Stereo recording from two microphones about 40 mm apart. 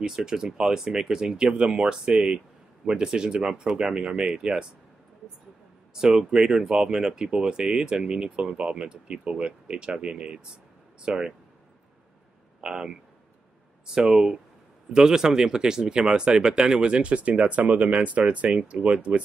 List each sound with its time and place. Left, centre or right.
0.0 s speech: centre
5.9 s speech: centre
12.5 s speech: centre
13.9 s speech: centre; by 19.2 s right